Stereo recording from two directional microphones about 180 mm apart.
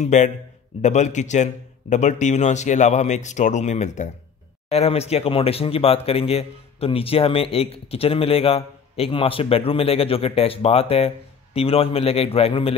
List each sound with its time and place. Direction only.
0.0 s speech: 40° left (ahead or behind)